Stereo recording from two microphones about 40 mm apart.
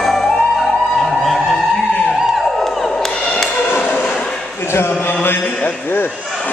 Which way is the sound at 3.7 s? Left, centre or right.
Left.